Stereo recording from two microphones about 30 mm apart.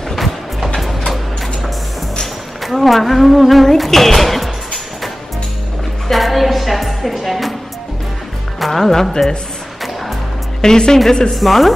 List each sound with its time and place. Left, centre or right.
0.7 s music: centre
2.6 s a woman's voice: centre
6.0 s music: centre
8.5 s speech: centre
10.6 s speech: left
11.3 s a woman's voice: centre